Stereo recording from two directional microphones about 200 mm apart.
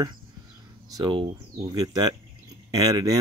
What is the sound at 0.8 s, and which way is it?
Speech, 20° right (ahead or behind).